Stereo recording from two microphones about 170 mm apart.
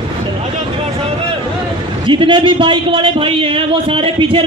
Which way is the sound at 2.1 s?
30° right (ahead or behind).